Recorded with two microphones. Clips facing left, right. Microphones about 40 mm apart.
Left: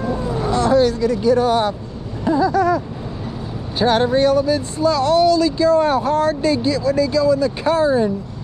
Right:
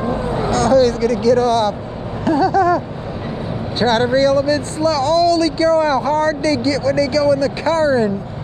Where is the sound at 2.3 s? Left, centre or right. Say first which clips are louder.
Right 2 dB; centre.